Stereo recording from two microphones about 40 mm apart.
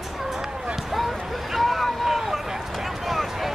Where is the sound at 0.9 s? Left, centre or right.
Centre.